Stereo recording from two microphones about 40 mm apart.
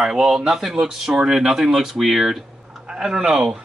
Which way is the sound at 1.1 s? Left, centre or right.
Right.